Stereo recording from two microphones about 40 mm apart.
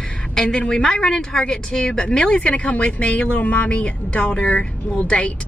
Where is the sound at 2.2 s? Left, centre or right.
Left.